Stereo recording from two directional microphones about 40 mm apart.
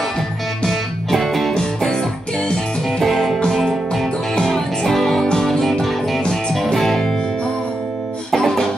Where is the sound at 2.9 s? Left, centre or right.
Centre.